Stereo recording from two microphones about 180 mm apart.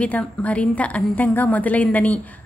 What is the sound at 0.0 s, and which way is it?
A woman's voice, 5° left (ahead or behind).